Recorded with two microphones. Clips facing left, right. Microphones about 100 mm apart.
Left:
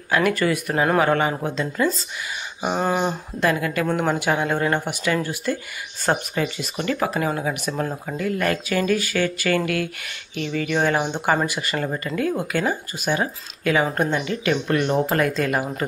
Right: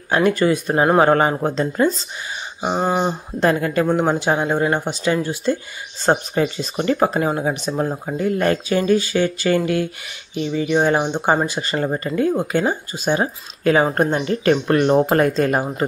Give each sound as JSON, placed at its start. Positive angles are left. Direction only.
{"t": 0.1, "sound": "speech", "side_deg": -25}
{"t": 2.6, "sound": "speech", "side_deg": -20}
{"t": 3.3, "sound": "speech", "side_deg": -35}
{"t": 3.8, "sound": "speech", "side_deg": -20}
{"t": 6.0, "sound": "speech", "side_deg": -35}